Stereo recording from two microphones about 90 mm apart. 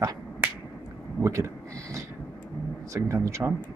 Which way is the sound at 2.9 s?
35° right (ahead or behind).